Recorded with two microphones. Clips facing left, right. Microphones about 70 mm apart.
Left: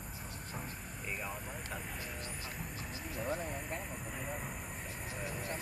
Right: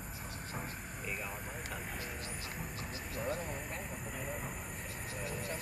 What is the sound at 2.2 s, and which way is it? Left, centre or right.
Vehicle, left.